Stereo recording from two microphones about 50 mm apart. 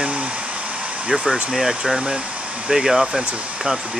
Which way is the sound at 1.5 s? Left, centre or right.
Centre.